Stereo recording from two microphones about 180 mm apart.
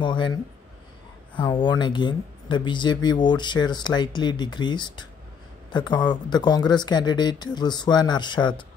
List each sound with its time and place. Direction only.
0.0 s speech: 25° left (ahead or behind)